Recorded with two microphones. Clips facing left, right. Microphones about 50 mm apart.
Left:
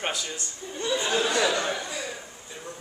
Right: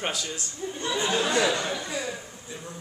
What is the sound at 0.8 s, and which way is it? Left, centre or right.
Speech, right.